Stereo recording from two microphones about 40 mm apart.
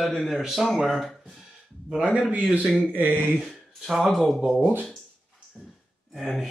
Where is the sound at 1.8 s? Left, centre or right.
Right.